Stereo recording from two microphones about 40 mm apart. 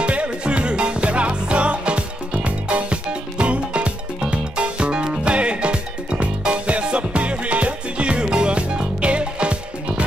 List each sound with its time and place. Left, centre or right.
0.0 s music: right